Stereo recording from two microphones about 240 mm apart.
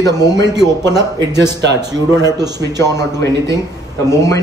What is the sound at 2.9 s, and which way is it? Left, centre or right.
Speech, centre.